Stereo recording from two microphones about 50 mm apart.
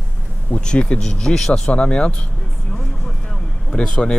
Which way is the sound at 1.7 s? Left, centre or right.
Left.